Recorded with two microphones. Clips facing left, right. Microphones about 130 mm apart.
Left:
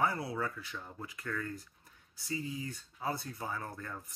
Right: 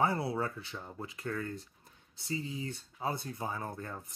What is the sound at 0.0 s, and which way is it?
Speech, 25° right (ahead or behind).